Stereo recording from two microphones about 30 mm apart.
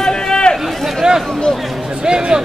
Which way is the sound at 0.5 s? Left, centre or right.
Centre.